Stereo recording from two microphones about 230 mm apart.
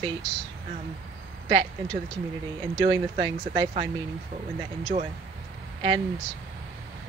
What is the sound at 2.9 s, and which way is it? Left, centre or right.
Speech, centre.